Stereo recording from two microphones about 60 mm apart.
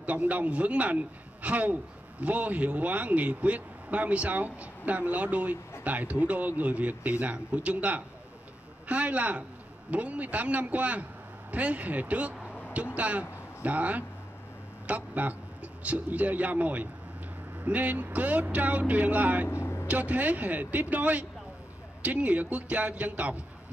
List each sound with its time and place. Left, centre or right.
0.0 s a man's voice: right
19.4 s vehicle: left
19.9 s a man's voice: right